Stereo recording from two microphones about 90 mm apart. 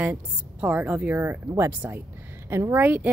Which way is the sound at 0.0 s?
15° right (ahead or behind).